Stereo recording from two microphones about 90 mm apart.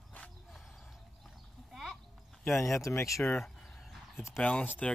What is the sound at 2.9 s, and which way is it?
Speech, 35° left (ahead or behind).